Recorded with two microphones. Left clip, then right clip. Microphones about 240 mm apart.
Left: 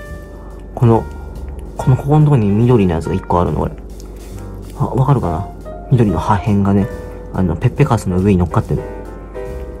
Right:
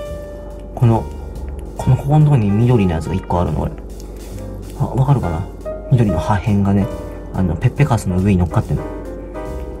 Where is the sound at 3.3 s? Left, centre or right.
Right.